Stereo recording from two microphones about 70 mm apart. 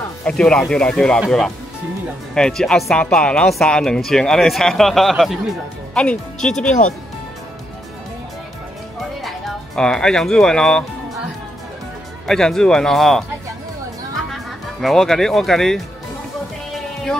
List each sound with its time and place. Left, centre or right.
0.2 s speech: centre
2.3 s speech: centre
3.4 s a man's voice: centre
9.8 s speech: centre
12.3 s speech: centre
14.8 s a man's voice: centre
16.7 s music: centre